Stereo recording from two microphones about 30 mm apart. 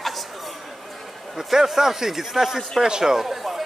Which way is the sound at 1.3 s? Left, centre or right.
Centre.